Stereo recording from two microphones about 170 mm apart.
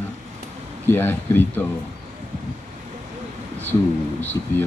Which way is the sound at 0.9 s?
10° left (ahead or behind).